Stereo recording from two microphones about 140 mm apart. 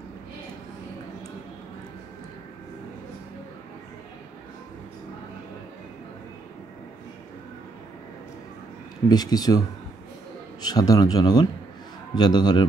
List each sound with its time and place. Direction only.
9.1 s speech: 30° left (ahead or behind)
10.6 s a man's voice: 30° left (ahead or behind)